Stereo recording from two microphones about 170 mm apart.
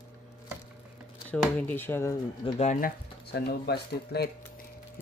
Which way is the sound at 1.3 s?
10° left (ahead or behind).